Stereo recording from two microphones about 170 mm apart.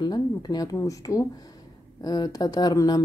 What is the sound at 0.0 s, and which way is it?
Speech, 25° left (ahead or behind).